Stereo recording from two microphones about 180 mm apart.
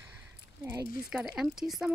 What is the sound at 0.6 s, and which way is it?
Speech, 15° right (ahead or behind).